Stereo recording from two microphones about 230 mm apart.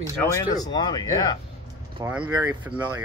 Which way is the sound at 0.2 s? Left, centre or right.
Centre.